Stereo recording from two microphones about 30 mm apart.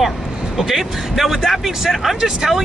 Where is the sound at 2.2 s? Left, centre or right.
Right.